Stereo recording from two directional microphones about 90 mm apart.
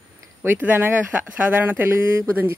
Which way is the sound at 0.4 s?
20° right (ahead or behind).